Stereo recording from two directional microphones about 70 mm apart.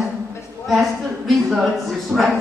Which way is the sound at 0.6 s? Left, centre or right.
Centre.